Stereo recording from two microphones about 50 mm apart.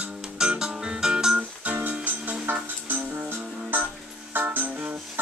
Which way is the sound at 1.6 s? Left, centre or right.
Right.